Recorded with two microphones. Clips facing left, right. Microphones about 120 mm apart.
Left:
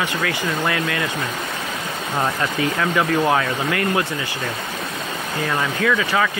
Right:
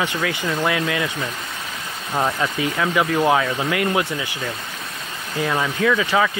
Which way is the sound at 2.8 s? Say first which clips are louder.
Right 1 dB; 15° right (ahead or behind).